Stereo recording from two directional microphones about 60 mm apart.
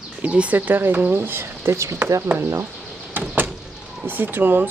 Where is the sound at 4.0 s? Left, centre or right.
Right.